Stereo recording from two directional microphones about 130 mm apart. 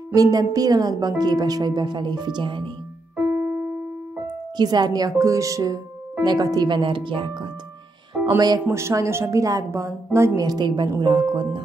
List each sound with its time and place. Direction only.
0.1 s a woman's voice: 30° right (ahead or behind)
3.3 s keyboard: 20° right (ahead or behind)
4.6 s a woman's voice: 30° right (ahead or behind)
8.4 s a woman's voice: 30° right (ahead or behind)